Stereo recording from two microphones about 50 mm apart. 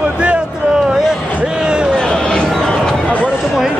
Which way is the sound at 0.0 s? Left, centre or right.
Right.